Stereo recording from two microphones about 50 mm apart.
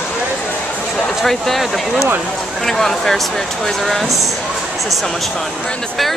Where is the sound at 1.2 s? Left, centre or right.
Centre.